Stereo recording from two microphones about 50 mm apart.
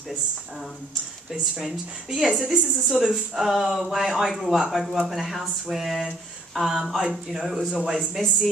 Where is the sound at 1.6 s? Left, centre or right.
Centre.